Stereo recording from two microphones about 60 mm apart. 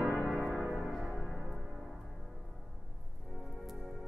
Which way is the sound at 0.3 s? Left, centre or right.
Centre.